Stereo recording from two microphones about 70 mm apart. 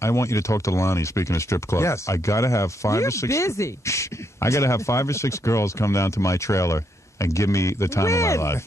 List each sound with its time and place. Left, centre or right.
0.0 s speech: left